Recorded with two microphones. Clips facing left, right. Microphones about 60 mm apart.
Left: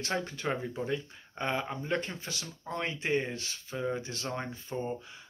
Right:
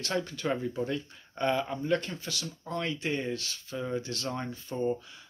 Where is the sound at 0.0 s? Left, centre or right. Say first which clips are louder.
Right 1 dB; left.